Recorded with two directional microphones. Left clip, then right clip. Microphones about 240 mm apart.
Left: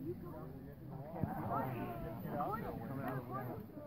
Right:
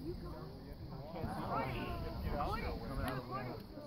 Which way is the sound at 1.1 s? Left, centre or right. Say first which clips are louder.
Even; right.